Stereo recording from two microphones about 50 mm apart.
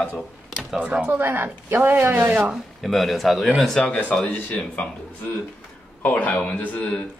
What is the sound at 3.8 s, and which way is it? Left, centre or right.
Speech, left.